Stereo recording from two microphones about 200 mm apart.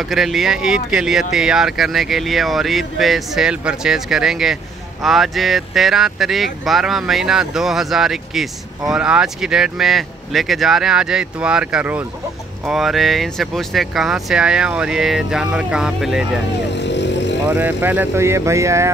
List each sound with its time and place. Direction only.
0.0 s speech: centre (ahead or behind)
16.7 s vehicle: 60° left (ahead or behind)
17.5 s speech: 10° right (ahead or behind)